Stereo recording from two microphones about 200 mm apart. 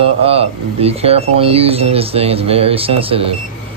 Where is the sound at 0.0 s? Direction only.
30° right (ahead or behind).